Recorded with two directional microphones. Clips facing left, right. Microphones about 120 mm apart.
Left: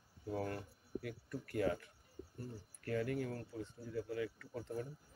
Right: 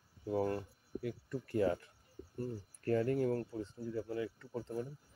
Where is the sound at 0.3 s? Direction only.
25° right (ahead or behind).